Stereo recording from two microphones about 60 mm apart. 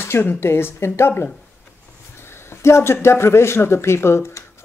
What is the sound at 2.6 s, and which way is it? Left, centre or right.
Speech, left.